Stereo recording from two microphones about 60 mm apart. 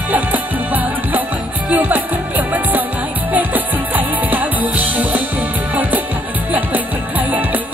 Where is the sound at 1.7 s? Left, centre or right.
Right.